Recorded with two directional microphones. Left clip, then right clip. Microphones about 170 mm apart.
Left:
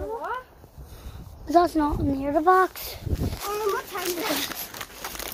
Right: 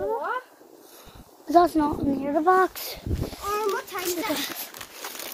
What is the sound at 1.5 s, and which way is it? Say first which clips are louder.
Speech: right 1 dB; 15° right (ahead or behind).